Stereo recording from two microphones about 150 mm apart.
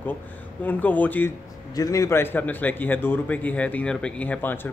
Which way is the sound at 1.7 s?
25° left (ahead or behind).